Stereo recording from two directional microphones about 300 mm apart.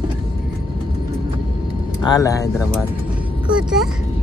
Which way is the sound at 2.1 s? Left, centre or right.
Centre.